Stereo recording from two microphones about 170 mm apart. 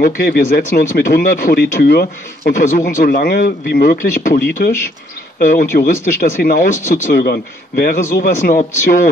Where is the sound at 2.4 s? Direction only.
45° left (ahead or behind).